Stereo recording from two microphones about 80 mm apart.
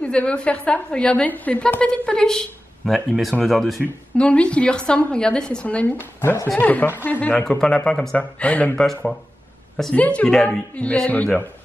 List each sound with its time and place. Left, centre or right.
0.0 s a woman's voice: centre
4.2 s a woman's voice: centre
8.7 s speech: centre
9.9 s a woman's voice: centre
10.3 s speech: centre
10.8 s a woman's voice: centre